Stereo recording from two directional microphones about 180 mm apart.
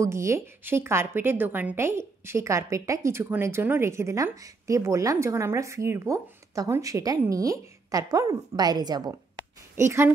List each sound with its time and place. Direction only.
0.0 s a woman's voice: 15° right (ahead or behind)